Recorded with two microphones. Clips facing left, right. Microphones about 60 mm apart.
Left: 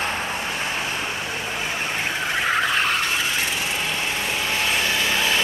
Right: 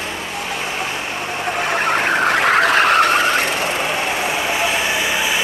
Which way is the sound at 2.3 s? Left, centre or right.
Right.